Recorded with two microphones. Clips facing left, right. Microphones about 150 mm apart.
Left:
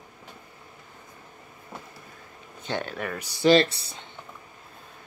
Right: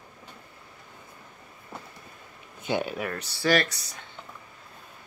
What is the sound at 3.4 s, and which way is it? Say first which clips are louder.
Speech: left 6 dB; 25° left (ahead or behind).